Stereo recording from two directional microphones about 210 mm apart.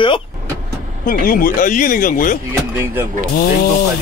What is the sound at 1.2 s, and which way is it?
Speech, 45° left (ahead or behind).